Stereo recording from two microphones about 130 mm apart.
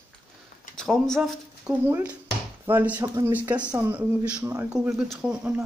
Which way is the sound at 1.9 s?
20° right (ahead or behind).